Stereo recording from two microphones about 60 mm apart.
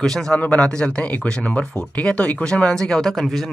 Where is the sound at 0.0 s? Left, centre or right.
Centre.